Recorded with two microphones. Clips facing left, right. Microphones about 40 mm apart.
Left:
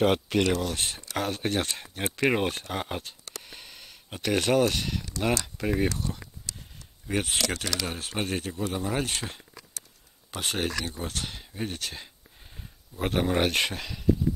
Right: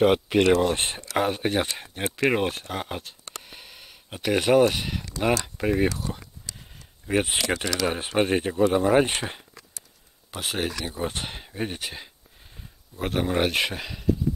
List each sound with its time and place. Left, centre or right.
0.0 s speech: centre
0.4 s speech: right
1.1 s speech: centre
3.4 s a sound: centre
5.6 s speech: centre
10.3 s speech: centre
10.9 s speech: right
12.4 s speech: centre